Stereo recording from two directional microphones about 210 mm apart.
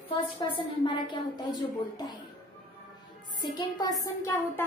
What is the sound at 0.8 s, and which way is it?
A woman's voice, 20° left (ahead or behind).